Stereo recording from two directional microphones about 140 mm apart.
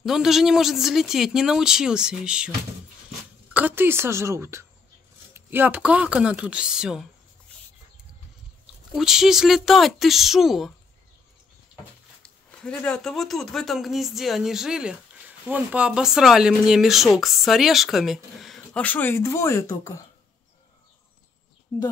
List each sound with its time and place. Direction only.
0.0 s speech: 5° right (ahead or behind)
3.5 s speech: 15° right (ahead or behind)
8.9 s speech: 5° right (ahead or behind)
12.4 s speech: 10° left (ahead or behind)